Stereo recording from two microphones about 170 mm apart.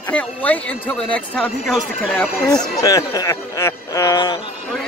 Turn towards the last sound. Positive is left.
turn(degrees=25)  # may be behind; listen again after turning